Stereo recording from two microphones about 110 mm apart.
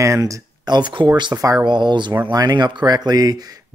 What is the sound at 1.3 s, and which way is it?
Speech, 30° right (ahead or behind).